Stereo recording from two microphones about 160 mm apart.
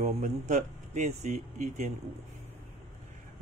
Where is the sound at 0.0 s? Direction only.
55° right (ahead or behind).